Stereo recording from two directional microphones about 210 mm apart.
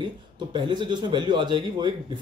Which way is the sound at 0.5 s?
20° right (ahead or behind).